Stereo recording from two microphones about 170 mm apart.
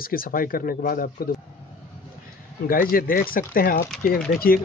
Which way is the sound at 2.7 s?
60° left (ahead or behind).